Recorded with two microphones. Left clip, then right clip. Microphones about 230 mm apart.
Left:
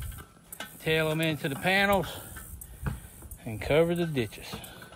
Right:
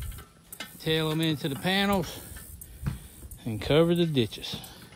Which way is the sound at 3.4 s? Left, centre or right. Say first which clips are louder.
Right 1 dB; right.